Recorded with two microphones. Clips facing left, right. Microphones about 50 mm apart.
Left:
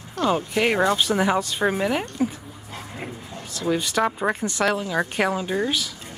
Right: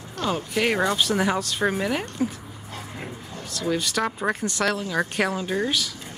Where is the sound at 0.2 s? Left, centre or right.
Centre.